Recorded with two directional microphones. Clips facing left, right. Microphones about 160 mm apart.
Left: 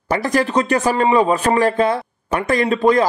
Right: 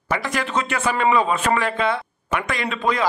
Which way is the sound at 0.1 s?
35° left (ahead or behind).